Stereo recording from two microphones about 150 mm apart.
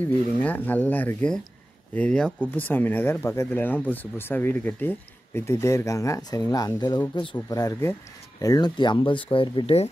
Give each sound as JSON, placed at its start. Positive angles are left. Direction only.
{"t": 0.0, "sound": "speech", "side_deg": 10}